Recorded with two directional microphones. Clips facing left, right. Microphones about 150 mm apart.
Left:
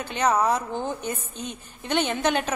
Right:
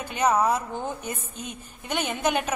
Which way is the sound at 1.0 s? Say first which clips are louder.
Left 3 dB; 30° left (ahead or behind).